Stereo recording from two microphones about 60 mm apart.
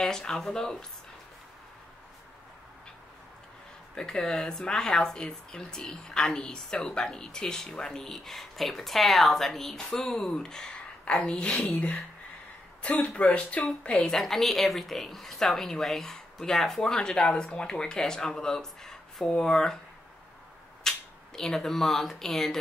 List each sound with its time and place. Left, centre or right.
0.0 s speech: centre
3.9 s speech: centre
14.0 s speech: centre
20.9 s a sound: centre
21.4 s speech: centre